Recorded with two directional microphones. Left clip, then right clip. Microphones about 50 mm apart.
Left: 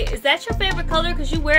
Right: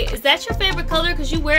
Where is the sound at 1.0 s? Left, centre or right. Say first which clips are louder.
Right 2 dB; centre.